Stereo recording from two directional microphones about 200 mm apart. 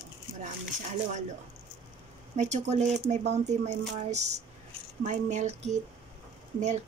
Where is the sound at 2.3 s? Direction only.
35° right (ahead or behind).